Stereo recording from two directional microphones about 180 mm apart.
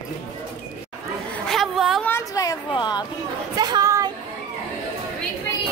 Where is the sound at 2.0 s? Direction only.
15° left (ahead or behind).